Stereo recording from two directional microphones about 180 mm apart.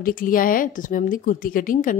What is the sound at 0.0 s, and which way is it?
A woman's voice, 50° left (ahead or behind).